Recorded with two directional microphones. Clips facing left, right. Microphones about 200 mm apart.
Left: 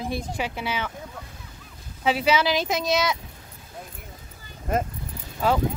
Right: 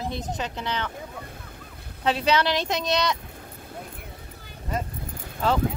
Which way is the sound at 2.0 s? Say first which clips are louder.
Left 1 dB; 5° left (ahead or behind).